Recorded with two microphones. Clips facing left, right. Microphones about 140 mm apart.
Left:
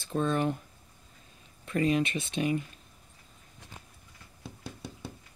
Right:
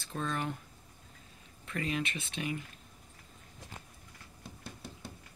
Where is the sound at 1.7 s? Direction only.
30° left (ahead or behind).